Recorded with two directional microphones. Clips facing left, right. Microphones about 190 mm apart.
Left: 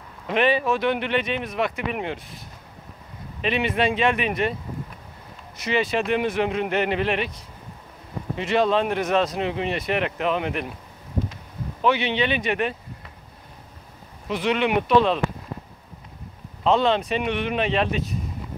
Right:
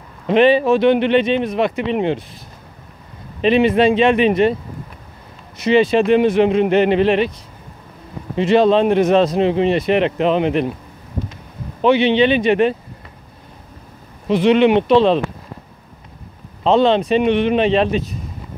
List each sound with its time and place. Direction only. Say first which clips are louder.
0.3 s speech: right 9 dB; 30° right (ahead or behind)
3.3 s speech: right 10 dB; 30° right (ahead or behind)
5.6 s speech: right 10 dB; 25° right (ahead or behind)
8.4 s speech: right 8 dB; 30° right (ahead or behind)
11.8 s speech: right 9 dB; 25° right (ahead or behind)
14.2 s speech: right 10 dB; 25° right (ahead or behind)
16.6 s speech: right 6 dB; 25° right (ahead or behind)